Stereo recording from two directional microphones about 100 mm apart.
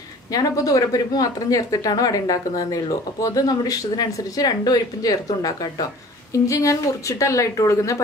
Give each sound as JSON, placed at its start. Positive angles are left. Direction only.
{"t": 0.3, "sound": "speech", "side_deg": 35}